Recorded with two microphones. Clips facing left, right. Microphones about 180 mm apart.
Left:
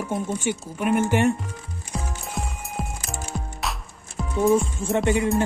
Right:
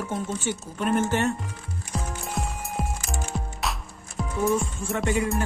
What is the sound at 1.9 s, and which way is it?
Music, centre (ahead or behind).